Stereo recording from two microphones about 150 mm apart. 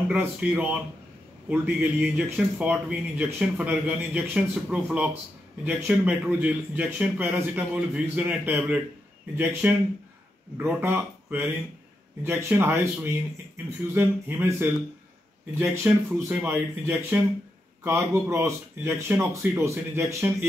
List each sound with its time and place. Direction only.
0.1 s speech: 10° right (ahead or behind)